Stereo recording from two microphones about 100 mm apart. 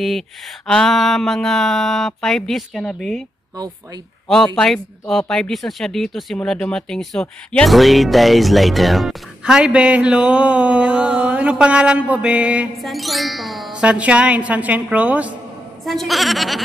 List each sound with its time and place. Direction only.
0.7 s speech: 5° left (ahead or behind)
3.5 s speech: 40° right (ahead or behind)
5.0 s speech: 5° left (ahead or behind); by 12.6 s 10° right (ahead or behind)
12.7 s speech: centre (ahead or behind)
13.7 s a woman's voice: 15° right (ahead or behind)
15.8 s speech: centre (ahead or behind)